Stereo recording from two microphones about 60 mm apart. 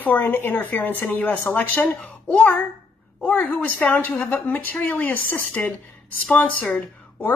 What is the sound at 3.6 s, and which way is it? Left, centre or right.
A woman's voice, left.